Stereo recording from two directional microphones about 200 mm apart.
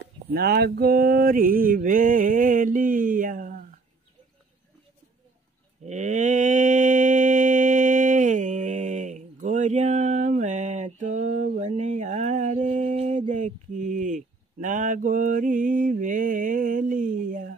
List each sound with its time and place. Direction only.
0.3 s mantra: 50° right (ahead or behind)
5.9 s mantra: 35° right (ahead or behind)
13.3 s a sound: 35° right (ahead or behind)